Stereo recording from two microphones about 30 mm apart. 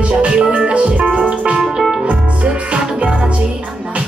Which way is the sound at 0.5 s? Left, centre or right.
Right.